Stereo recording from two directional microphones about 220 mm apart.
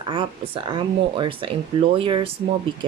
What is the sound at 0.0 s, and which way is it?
A woman's voice, 25° right (ahead or behind).